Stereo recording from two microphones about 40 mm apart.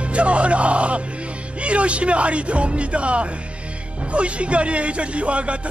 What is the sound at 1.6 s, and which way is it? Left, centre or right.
Speech, right.